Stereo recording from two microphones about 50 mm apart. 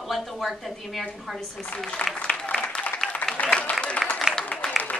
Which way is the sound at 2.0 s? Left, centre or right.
Left.